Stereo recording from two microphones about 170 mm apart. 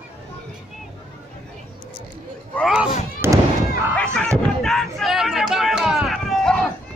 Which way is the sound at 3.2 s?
15° right (ahead or behind).